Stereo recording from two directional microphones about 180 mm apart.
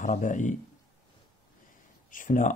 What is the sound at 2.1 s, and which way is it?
Speech, 45° left (ahead or behind).